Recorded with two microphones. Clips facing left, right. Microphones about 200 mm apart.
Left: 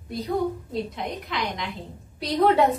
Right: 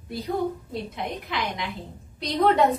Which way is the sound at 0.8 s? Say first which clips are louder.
Even; centre (ahead or behind).